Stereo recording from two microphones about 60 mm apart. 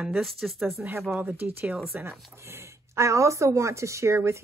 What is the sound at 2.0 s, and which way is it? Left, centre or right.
Speech, right.